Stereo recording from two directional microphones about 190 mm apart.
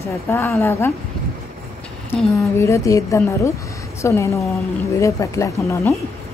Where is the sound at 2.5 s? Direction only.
15° left (ahead or behind).